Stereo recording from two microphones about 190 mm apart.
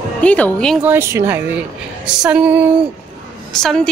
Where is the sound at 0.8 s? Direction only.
15° right (ahead or behind).